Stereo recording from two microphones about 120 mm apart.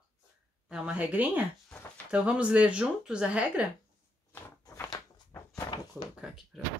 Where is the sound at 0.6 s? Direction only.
10° right (ahead or behind).